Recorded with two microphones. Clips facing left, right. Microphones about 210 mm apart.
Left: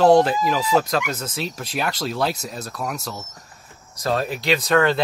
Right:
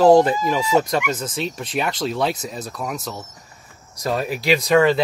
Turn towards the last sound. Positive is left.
turn(degrees=0)  # may be behind; listen again after turning